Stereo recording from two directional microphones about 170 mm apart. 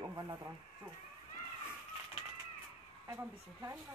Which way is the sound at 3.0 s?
15° right (ahead or behind).